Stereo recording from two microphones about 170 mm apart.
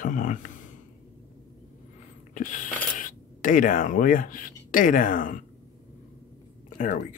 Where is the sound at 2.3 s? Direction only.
50° left (ahead or behind).